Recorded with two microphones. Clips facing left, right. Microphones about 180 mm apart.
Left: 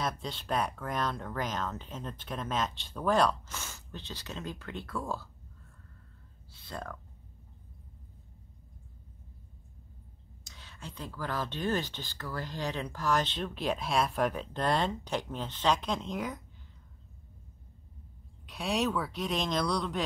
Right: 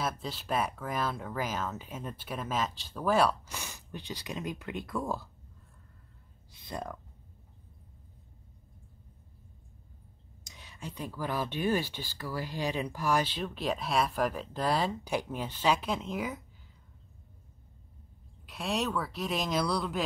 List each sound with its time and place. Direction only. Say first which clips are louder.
0.0 s speech: even; 5° right (ahead or behind)
6.5 s a sound: right 2 dB; 15° right (ahead or behind)
10.4 s speech: right 3 dB; 15° right (ahead or behind)
18.5 s speech: left 1 dB; centre (ahead or behind)